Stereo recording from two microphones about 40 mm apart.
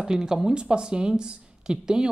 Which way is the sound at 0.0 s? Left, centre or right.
Centre.